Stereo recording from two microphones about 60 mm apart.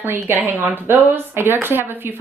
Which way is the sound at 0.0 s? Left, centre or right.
Right.